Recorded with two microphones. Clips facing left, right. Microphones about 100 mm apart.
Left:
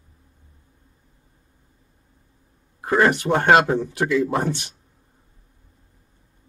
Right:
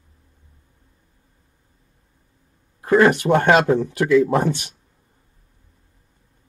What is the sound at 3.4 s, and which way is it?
Speech, 55° right (ahead or behind).